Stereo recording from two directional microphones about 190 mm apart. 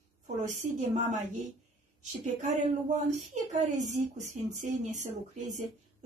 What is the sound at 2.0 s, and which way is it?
A woman's voice, 40° right (ahead or behind).